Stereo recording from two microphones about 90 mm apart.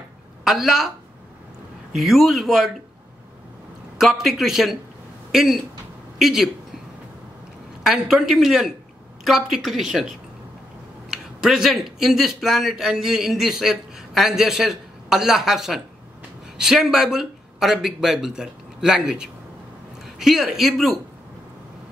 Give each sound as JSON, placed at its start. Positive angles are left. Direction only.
{"t": 0.4, "sound": "speech", "side_deg": -5}
{"t": 2.0, "sound": "speech", "side_deg": 0}
{"t": 4.0, "sound": "speech", "side_deg": -5}
{"t": 7.8, "sound": "speech", "side_deg": -5}